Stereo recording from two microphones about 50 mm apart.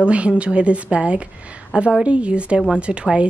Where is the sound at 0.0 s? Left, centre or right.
Right.